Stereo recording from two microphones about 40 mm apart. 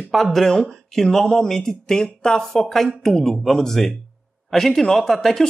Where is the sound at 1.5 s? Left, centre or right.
Centre.